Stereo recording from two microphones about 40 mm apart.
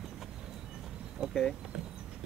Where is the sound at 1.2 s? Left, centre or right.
Centre.